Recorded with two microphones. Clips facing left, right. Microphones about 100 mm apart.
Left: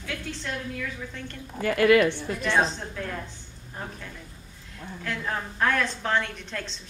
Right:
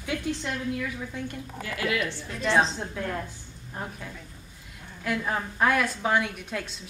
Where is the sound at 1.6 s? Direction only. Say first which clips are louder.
Left 10 dB; 55° left (ahead or behind).